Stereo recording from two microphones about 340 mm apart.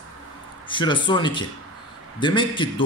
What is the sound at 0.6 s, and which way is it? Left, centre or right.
A man's voice, centre.